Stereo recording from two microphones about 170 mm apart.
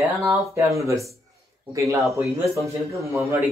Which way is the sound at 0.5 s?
15° right (ahead or behind).